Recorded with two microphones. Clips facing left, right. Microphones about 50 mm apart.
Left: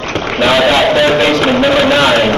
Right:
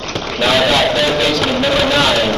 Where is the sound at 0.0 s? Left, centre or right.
Left.